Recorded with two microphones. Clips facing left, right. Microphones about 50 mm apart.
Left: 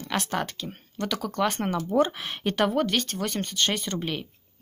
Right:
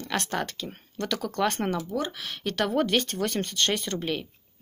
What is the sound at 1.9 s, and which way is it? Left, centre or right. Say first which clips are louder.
Speech: left 7 dB; left.